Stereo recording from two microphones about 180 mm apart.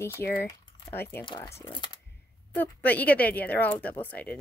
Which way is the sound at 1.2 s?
25° left (ahead or behind).